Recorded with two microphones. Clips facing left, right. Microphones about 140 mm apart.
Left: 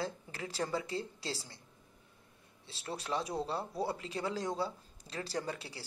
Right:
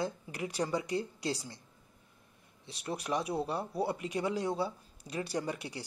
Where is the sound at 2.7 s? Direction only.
15° right (ahead or behind).